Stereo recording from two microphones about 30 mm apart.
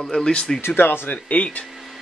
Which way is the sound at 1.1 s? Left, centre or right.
Left.